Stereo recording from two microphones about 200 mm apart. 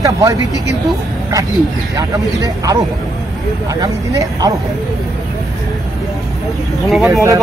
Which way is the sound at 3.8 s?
15° right (ahead or behind).